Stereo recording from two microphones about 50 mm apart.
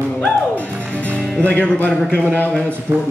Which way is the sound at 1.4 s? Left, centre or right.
Left.